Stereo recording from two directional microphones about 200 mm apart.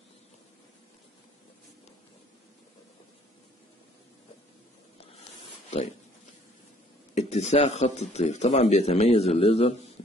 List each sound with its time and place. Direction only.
7.2 s speech: 35° left (ahead or behind)